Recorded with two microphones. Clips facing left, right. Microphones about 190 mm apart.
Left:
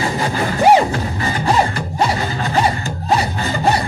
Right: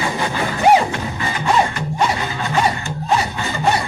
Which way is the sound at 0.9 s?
35° left (ahead or behind).